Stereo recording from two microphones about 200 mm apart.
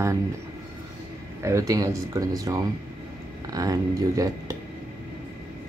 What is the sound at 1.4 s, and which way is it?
Speech, 15° right (ahead or behind).